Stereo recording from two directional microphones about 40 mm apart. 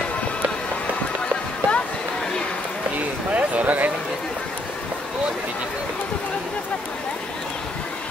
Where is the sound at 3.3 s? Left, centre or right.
Right.